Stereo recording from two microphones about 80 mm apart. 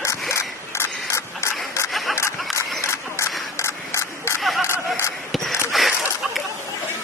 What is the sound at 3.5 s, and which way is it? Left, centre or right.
Battle cry, left.